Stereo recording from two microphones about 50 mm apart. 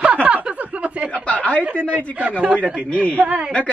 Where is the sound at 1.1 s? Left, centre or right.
Left.